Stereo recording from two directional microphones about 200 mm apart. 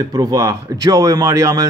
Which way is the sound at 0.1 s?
20° right (ahead or behind).